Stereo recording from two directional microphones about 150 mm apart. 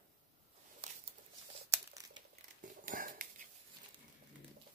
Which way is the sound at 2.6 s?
65° right (ahead or behind).